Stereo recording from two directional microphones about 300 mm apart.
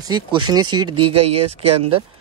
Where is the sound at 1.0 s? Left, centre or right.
Right.